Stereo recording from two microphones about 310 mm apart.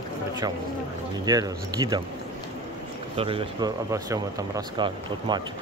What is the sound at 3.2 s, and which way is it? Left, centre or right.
Speech, centre.